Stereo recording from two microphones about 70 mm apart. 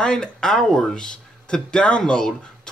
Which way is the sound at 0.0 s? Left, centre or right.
Centre.